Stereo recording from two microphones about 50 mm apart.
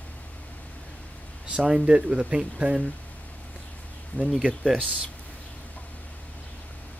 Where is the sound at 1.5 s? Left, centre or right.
Centre.